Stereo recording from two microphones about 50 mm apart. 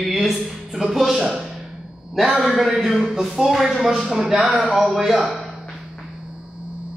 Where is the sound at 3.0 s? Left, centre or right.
Centre.